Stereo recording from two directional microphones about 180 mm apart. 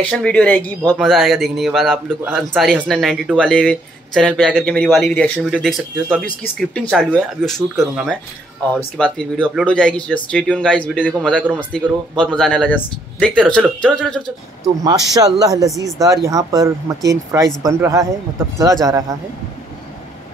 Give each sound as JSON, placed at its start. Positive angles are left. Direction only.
{"t": 0.1, "sound": "a man's voice", "side_deg": 5}
{"t": 14.8, "sound": "speech", "side_deg": -20}